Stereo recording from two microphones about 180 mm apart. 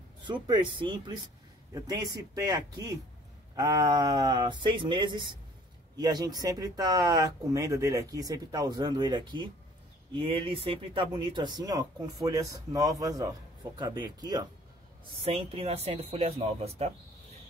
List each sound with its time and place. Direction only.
0.2 s speech: 25° right (ahead or behind)